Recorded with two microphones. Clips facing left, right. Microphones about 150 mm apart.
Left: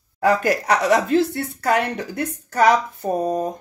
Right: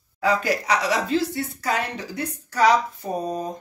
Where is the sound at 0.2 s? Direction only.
50° left (ahead or behind).